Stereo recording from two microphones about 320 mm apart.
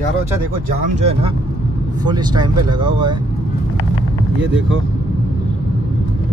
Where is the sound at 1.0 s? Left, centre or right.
Centre.